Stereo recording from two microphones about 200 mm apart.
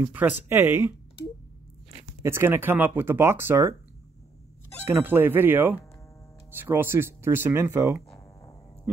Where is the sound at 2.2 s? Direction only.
10° right (ahead or behind).